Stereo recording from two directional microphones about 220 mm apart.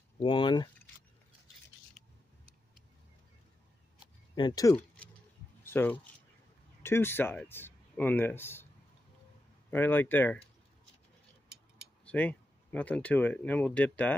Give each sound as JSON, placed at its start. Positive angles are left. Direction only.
{"t": 0.2, "sound": "speech", "side_deg": 20}
{"t": 4.4, "sound": "speech", "side_deg": 20}
{"t": 4.7, "sound": "a sound", "side_deg": 5}
{"t": 5.7, "sound": "speech", "side_deg": 10}
{"t": 9.7, "sound": "speech", "side_deg": 10}
{"t": 12.0, "sound": "speech", "side_deg": 5}